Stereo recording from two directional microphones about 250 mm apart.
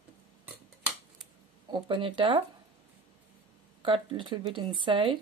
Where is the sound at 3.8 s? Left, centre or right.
Centre.